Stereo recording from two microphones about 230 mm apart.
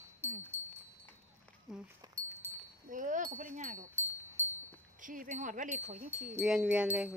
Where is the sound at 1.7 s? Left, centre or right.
Centre.